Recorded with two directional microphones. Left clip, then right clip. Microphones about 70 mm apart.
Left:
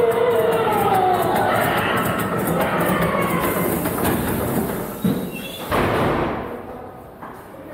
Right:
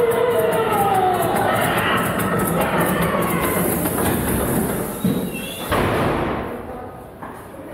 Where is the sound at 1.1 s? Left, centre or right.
Left.